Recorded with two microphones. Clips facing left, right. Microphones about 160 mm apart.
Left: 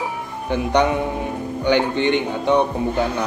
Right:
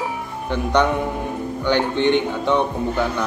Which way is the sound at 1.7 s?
15° left (ahead or behind).